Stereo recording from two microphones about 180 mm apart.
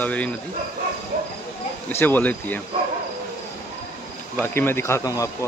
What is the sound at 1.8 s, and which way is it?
Speech, 10° left (ahead or behind).